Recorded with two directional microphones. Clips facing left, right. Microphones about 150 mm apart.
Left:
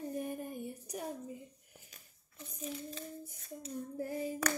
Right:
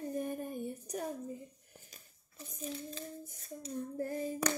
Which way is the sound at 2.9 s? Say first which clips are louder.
Even; 35° right (ahead or behind).